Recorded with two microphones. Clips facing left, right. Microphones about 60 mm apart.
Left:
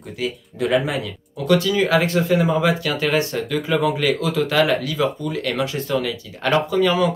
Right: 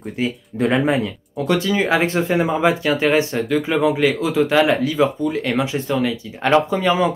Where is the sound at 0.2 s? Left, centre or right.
Right.